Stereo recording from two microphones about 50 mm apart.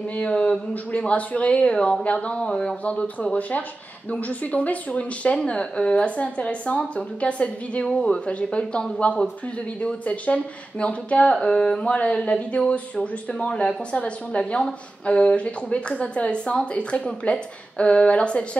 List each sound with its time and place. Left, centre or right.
0.1 s a woman's voice: left
7.8 s a woman's voice: centre